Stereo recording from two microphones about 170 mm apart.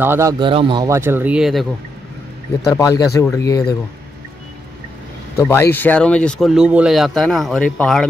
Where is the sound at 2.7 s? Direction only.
20° left (ahead or behind).